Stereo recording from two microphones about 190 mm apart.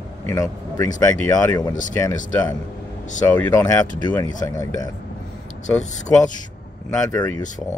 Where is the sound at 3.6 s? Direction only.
20° left (ahead or behind).